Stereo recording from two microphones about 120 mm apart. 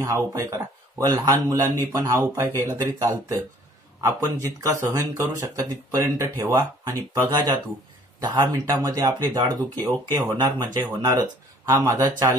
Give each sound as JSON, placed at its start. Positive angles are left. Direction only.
{"t": 0.0, "sound": "speech", "side_deg": -30}